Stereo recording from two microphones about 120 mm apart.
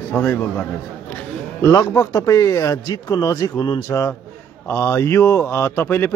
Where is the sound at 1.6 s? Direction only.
30° left (ahead or behind).